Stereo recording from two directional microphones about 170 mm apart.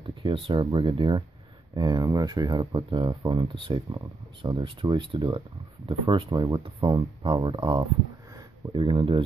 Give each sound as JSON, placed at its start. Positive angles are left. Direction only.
{"t": 0.0, "sound": "speech", "side_deg": -30}